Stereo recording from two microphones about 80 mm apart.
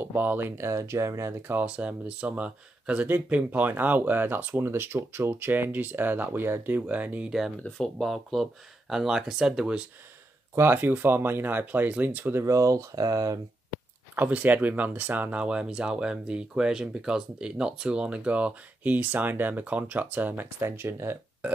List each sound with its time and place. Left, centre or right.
0.0 s speech: right
0.7 s speech: right
1.5 s speech: centre
7.2 s speech: centre
7.6 s speech: centre
10.5 s speech: right
12.4 s speech: right
14.1 s speech: right